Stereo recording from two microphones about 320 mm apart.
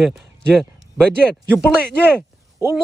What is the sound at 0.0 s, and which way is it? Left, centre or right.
Speech, centre.